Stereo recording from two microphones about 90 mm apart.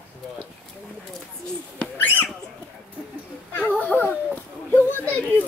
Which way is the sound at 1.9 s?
20° left (ahead or behind).